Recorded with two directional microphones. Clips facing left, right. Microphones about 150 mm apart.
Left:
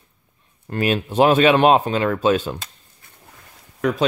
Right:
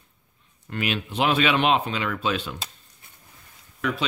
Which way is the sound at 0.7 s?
40° left (ahead or behind).